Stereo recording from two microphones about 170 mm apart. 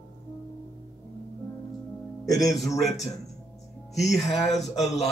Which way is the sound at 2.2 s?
20° left (ahead or behind).